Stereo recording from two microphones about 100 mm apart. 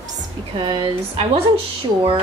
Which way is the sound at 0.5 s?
55° right (ahead or behind).